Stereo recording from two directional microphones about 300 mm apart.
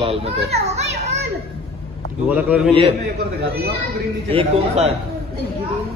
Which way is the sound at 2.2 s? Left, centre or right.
Centre.